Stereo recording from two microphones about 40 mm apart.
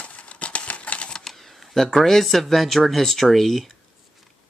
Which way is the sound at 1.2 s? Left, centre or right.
Centre.